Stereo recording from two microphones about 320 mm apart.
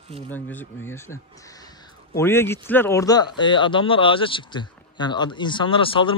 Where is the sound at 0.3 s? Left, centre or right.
Centre.